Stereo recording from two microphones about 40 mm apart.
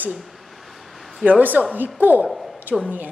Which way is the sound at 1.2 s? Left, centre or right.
Right.